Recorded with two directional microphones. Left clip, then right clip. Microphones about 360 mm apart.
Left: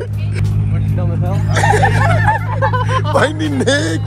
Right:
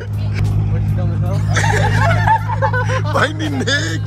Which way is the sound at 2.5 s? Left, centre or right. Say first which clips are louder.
Left 1 dB; left.